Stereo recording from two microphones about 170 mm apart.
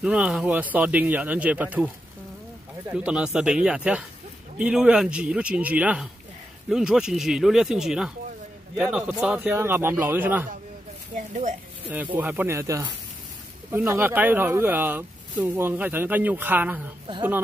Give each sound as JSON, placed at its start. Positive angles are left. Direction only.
{"t": 0.0, "sound": "speech", "side_deg": -5}
{"t": 2.9, "sound": "speech", "side_deg": -5}
{"t": 11.1, "sound": "speech", "side_deg": -50}
{"t": 11.9, "sound": "speech", "side_deg": -10}